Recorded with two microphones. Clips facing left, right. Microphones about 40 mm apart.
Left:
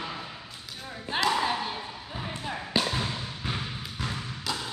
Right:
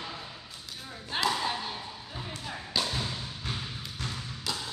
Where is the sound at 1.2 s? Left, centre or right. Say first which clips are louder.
Left 4 dB; left.